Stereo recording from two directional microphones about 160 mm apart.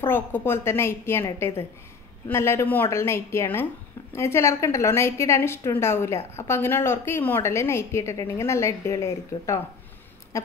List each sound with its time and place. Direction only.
0.0 s a woman's voice: 15° left (ahead or behind)
2.2 s a woman's voice: 15° left (ahead or behind)
10.3 s a sound: 20° left (ahead or behind)